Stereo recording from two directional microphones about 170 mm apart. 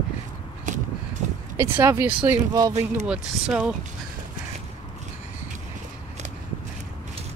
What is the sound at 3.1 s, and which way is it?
Speech, 5° right (ahead or behind).